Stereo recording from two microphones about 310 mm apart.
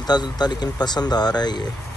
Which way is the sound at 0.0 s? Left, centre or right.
Centre.